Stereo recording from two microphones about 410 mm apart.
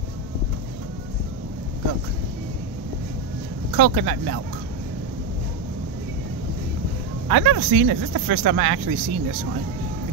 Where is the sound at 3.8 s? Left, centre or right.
Right.